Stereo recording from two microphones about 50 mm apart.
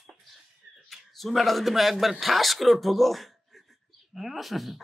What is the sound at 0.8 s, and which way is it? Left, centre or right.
A man's voice, centre.